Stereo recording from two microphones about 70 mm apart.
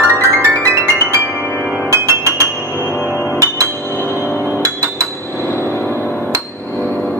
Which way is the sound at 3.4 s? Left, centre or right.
Right.